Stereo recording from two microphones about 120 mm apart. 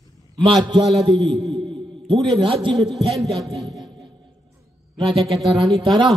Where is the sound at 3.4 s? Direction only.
Centre (ahead or behind).